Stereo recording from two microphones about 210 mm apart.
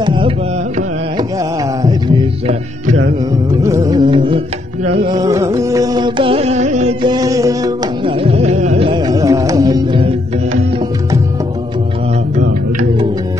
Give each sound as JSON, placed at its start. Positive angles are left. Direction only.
{"t": 0.0, "sound": "carnatic music", "side_deg": -25}
{"t": 3.6, "sound": "music", "side_deg": -15}
{"t": 8.2, "sound": "music", "side_deg": -30}